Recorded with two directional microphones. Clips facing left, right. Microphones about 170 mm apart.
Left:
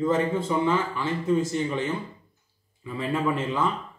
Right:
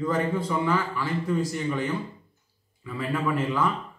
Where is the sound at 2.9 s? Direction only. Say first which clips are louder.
Left 1 dB; 25° left (ahead or behind).